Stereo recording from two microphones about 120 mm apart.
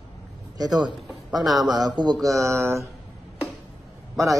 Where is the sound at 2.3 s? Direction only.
25° right (ahead or behind).